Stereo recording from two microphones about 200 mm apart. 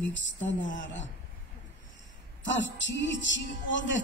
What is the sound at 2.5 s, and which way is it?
A man's voice, 65° left (ahead or behind).